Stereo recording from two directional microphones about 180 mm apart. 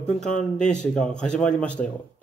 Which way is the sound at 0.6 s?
5° left (ahead or behind).